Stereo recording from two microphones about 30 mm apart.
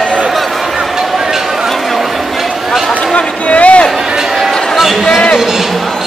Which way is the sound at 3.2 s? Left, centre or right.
Left.